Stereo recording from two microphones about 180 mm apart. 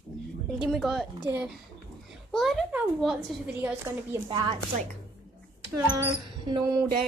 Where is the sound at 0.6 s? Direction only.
Centre (ahead or behind).